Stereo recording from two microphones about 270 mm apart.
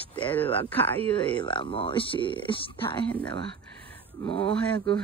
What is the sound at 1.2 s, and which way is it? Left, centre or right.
Speech, centre.